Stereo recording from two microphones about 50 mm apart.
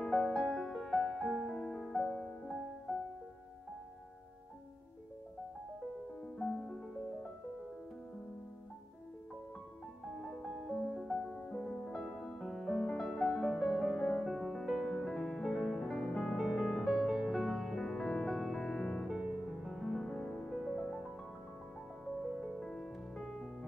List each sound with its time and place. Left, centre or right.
0.0 s music: centre
1.6 s music: centre
6.3 s music: centre
10.2 s music: centre
22.3 s music: centre
22.6 s music: centre